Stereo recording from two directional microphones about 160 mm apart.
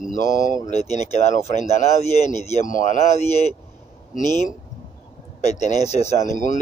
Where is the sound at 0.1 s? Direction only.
50° left (ahead or behind).